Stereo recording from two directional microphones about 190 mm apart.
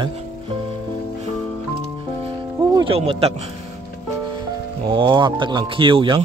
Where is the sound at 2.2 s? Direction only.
25° right (ahead or behind).